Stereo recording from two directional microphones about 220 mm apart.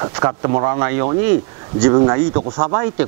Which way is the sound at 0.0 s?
20° right (ahead or behind).